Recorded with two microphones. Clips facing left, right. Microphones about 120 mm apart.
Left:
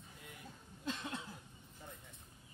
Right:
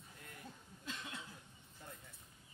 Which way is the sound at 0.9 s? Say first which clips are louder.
Left 6 dB; 35° left (ahead or behind).